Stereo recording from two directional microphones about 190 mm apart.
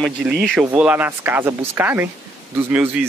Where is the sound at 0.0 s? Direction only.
5° right (ahead or behind).